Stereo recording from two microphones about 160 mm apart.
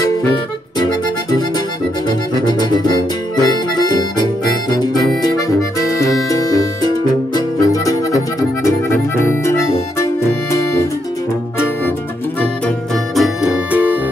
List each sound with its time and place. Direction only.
2.0 s accordion: 25° left (ahead or behind)
3.4 s harmonica: 25° left (ahead or behind)
7.3 s music: 20° left (ahead or behind)
12.4 s music: 5° left (ahead or behind)